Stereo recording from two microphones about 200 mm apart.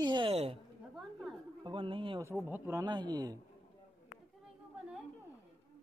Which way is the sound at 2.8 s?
20° right (ahead or behind).